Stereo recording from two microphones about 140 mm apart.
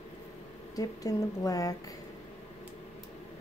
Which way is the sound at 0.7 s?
25° left (ahead or behind).